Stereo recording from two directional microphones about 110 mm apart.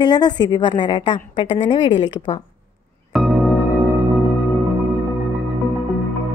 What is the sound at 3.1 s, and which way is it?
Music, 5° right (ahead or behind).